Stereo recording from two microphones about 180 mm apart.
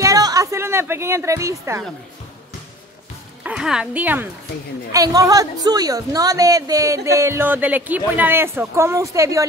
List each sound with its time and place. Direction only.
0.0 s a woman's voice: 20° right (ahead or behind)
3.4 s a woman's voice: 5° right (ahead or behind)
4.9 s a woman's voice: 20° right (ahead or behind)